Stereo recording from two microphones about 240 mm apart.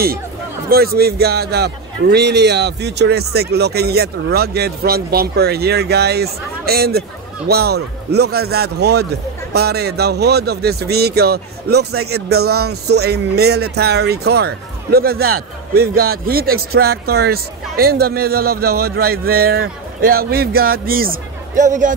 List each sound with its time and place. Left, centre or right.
0.7 s a man's voice: right